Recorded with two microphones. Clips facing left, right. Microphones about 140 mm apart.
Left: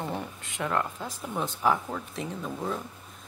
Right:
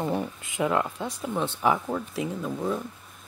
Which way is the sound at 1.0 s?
5° left (ahead or behind).